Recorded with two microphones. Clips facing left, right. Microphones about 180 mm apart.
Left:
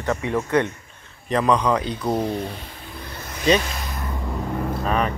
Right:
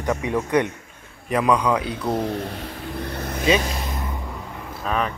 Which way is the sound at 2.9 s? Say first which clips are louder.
Right 7 dB; 65° right (ahead or behind).